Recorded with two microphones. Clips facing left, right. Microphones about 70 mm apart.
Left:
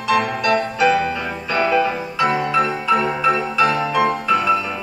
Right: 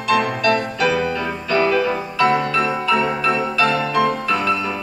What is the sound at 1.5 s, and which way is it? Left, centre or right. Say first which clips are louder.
Music: even; left.